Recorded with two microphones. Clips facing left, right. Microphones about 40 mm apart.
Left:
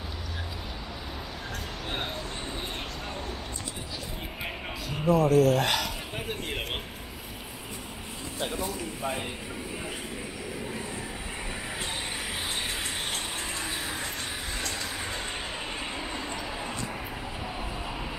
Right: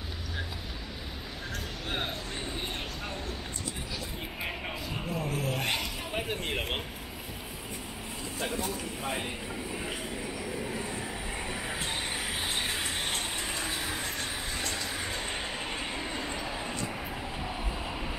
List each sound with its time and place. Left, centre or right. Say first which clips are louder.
4.9 s a sound: left 14 dB; centre
5.3 s speech: left 12 dB; centre
5.6 s speech: left 5 dB; left
6.1 s speech: right 3 dB; centre
10.1 s train: right 1 dB; centre
14.7 s vehicle: left 1 dB; centre
15.8 s train: left 1 dB; centre